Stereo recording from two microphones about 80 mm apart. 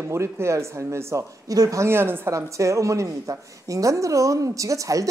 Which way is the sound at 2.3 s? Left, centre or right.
Right.